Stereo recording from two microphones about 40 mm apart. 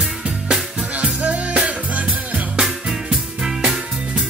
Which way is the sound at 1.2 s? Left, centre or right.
Right.